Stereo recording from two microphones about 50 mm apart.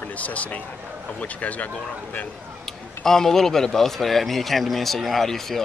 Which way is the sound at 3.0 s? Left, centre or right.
Centre.